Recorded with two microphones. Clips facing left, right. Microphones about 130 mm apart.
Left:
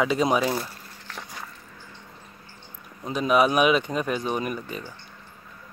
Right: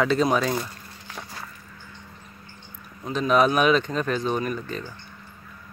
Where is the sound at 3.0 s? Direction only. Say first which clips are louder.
Right 1 dB; 10° left (ahead or behind).